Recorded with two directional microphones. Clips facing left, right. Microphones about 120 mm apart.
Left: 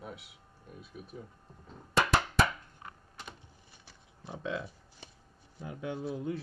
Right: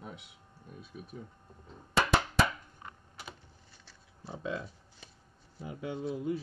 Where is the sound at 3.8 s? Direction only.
15° left (ahead or behind).